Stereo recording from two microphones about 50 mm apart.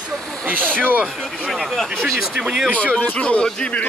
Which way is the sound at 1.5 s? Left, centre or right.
Centre.